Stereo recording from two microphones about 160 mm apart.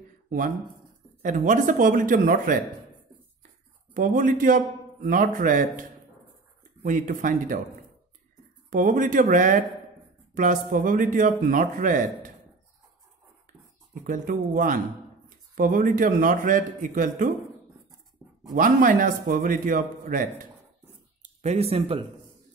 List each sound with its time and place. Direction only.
1.2 s a man's voice: 50° right (ahead or behind)
3.9 s a man's voice: 55° right (ahead or behind)
6.8 s a man's voice: 55° right (ahead or behind)
8.6 s a man's voice: 55° right (ahead or behind)
14.0 s a man's voice: 55° right (ahead or behind)
18.5 s a man's voice: 60° right (ahead or behind)
21.2 s speech: 45° right (ahead or behind)